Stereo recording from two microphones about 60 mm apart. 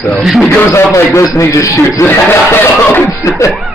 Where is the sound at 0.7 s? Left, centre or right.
Left.